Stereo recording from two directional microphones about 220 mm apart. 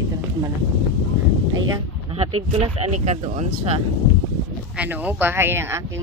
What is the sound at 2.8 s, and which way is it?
Speech, 30° right (ahead or behind).